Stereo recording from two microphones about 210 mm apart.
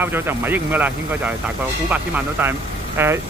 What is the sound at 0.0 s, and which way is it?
Speech, 10° right (ahead or behind).